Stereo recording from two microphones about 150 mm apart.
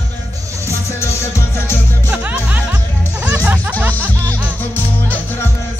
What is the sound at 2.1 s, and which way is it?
Music, 10° right (ahead or behind).